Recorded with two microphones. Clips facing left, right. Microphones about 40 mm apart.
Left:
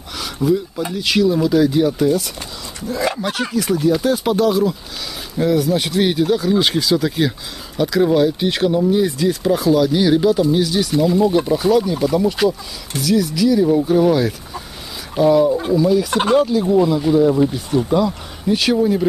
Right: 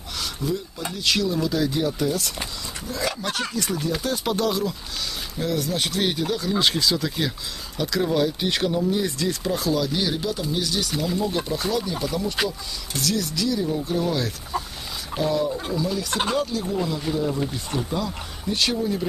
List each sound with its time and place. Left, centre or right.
0.2 s speech: centre
2.9 s speech: left
3.3 s speech: centre
16.7 s speech: centre
18.8 s speech: centre